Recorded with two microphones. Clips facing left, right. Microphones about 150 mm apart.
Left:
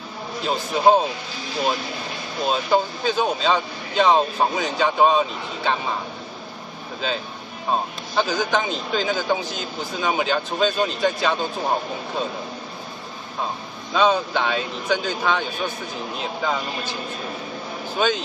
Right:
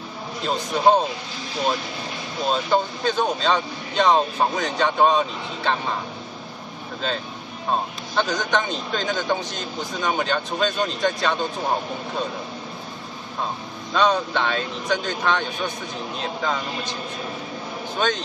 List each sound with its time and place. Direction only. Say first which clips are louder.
0.4 s speech: left 1 dB; 5° left (ahead or behind)
2.4 s speech: left 1 dB; 5° left (ahead or behind)
8.2 s speech: left 1 dB; 5° left (ahead or behind)
13.9 s speech: left 1 dB; 5° left (ahead or behind)